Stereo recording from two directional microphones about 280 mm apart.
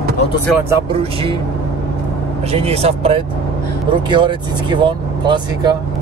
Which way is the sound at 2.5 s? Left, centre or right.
Right.